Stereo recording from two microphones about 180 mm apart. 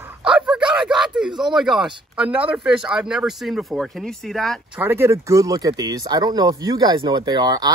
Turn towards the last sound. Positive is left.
turn(degrees=-25)  # may be behind; listen again after turning